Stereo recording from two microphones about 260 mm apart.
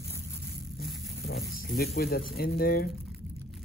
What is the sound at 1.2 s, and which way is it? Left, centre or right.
Speech, left.